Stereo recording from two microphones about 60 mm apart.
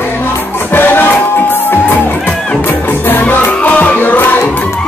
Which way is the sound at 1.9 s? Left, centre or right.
Left.